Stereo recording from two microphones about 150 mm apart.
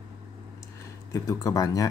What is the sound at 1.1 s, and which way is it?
Speech, 20° left (ahead or behind).